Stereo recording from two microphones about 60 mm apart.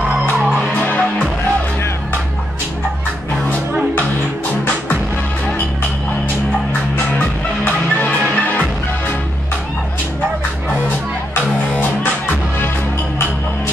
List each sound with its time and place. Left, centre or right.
0.6 s music: left
7.2 s music: left